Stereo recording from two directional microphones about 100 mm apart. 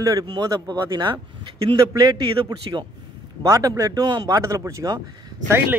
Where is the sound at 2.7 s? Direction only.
45° right (ahead or behind).